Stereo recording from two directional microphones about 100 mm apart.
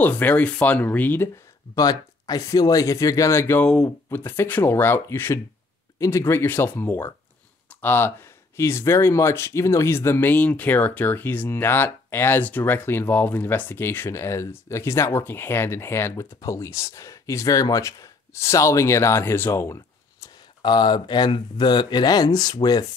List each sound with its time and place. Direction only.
0.0 s speech: 15° left (ahead or behind)
1.8 s speech: 40° left (ahead or behind); by 3.6 s 25° left (ahead or behind)
3.6 s speech: 5° left (ahead or behind)
4.1 s speech: 20° left (ahead or behind)
20.6 s speech: 50° left (ahead or behind)